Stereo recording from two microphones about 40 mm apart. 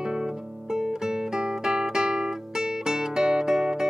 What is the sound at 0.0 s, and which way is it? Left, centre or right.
Music, centre.